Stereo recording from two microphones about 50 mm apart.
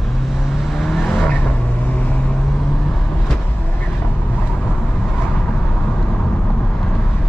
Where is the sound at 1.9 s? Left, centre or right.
Left.